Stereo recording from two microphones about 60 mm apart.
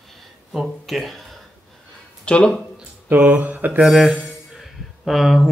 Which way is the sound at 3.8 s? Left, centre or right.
Centre.